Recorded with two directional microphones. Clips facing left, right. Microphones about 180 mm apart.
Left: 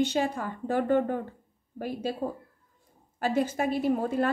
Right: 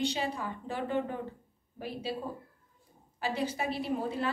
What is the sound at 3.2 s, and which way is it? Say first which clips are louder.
A woman's voice: left 6 dB; 45° left (ahead or behind).